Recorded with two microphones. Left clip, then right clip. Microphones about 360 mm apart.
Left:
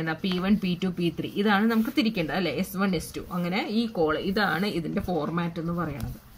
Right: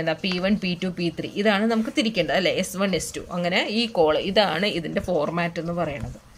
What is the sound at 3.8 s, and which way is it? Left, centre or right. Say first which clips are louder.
Speech: right 5 dB; right.